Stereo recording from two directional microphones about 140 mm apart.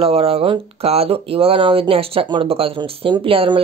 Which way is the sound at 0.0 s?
45° right (ahead or behind).